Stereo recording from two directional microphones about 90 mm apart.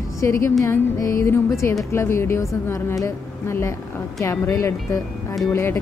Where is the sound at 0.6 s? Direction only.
30° left (ahead or behind).